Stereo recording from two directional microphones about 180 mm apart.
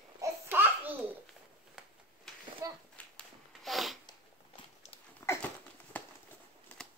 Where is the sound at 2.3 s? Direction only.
Centre (ahead or behind).